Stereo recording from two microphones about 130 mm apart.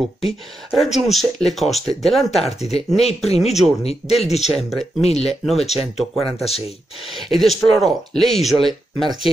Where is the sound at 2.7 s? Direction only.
50° left (ahead or behind).